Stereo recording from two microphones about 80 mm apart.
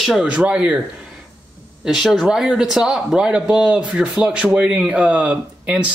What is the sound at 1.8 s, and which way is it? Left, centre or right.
A man's voice, centre.